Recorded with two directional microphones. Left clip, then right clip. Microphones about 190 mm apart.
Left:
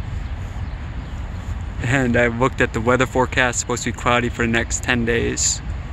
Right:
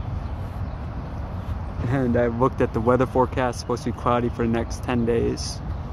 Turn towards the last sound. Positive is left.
turn(degrees=10)  # may be behind; listen again after turning